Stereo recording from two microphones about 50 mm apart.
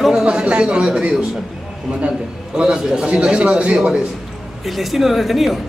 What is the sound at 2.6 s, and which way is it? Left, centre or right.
A man's voice, centre.